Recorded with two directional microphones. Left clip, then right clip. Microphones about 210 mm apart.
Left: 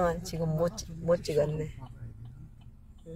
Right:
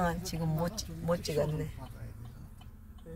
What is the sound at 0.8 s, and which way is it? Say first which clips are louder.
Speech: left 5 dB; 20° left (ahead or behind).